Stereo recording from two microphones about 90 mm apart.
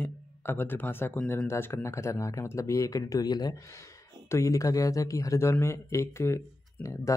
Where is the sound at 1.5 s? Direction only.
30° left (ahead or behind); by 3.6 s 50° left (ahead or behind).